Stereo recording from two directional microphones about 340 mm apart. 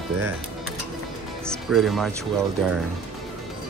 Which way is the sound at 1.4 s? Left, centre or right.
Centre.